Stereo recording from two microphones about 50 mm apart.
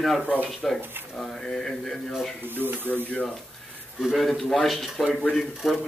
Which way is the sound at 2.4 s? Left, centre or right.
Right.